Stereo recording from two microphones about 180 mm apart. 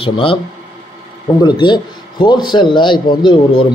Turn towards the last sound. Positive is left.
turn(degrees=25)  # may be behind; listen again after turning